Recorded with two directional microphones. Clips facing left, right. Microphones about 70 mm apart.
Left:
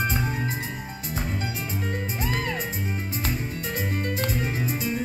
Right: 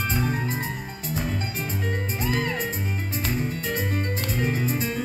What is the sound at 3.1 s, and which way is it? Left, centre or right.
Music, right.